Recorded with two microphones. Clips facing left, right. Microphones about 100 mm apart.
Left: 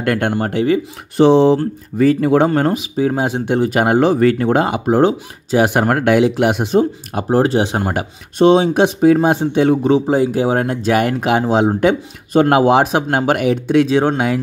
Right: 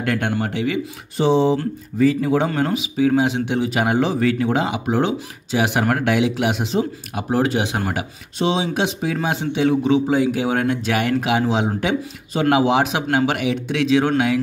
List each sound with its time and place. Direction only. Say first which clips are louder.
0.0 s speech: left 4 dB; 50° left (ahead or behind)
1.1 s speech: left 6 dB; 65° left (ahead or behind)
2.0 s speech: left 5 dB; 55° left (ahead or behind); by 7.9 s 35° left (ahead or behind)
7.9 s speech: left 4 dB; 45° left (ahead or behind)